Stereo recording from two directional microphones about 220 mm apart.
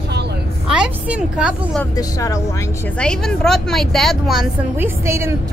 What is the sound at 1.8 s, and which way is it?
Speech, 15° left (ahead or behind).